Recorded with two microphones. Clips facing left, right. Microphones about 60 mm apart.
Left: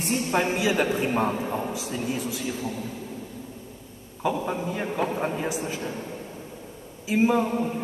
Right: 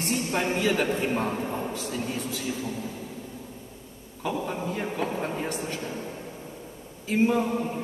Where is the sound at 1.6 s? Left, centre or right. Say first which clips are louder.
Left 1 dB; centre.